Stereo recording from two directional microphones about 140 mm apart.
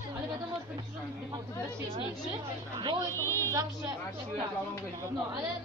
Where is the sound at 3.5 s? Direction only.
25° right (ahead or behind).